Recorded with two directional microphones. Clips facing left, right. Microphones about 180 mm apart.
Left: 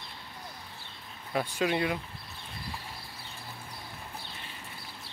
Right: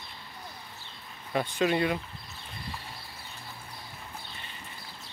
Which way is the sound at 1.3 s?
10° left (ahead or behind).